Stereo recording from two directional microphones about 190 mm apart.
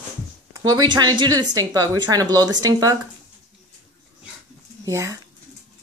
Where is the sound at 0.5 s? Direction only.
20° right (ahead or behind).